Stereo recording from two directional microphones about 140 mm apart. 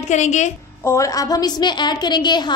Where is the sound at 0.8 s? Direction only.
20° left (ahead or behind).